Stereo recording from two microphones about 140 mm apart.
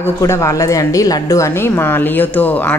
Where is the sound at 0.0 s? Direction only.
20° left (ahead or behind).